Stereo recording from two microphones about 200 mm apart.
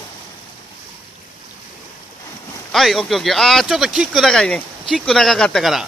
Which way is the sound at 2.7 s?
Centre (ahead or behind).